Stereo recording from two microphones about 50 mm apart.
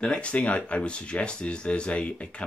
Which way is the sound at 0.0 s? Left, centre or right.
Left.